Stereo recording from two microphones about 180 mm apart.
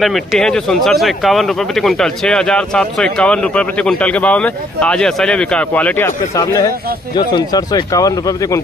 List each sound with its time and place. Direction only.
0.0 s speech: centre (ahead or behind); by 8.5 s 20° left (ahead or behind)